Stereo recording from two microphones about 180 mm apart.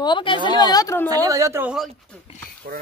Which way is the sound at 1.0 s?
20° right (ahead or behind).